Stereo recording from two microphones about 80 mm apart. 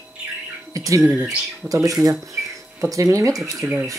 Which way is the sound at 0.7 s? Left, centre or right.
Right.